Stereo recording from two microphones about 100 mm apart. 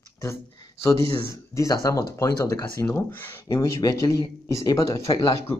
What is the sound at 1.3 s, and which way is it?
Speech, 30° left (ahead or behind).